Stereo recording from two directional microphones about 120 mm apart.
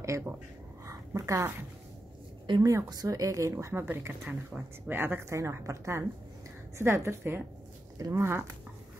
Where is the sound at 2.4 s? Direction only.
40° right (ahead or behind).